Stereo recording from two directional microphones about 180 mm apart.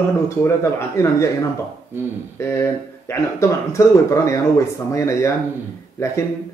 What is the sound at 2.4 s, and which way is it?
Speech, 15° left (ahead or behind).